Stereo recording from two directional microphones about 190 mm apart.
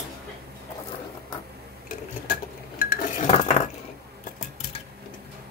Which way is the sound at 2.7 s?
45° left (ahead or behind).